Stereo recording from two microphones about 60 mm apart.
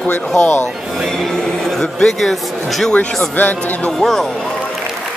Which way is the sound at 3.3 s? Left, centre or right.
Left.